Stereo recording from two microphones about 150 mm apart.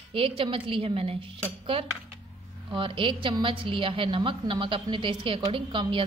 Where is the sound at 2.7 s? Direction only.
35° right (ahead or behind).